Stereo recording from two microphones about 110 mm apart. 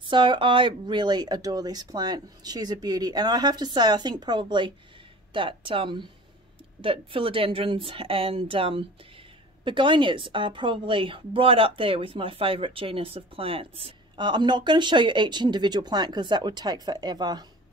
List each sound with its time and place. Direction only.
0.0 s a woman's voice: 45° right (ahead or behind)
14.1 s speech: 45° right (ahead or behind)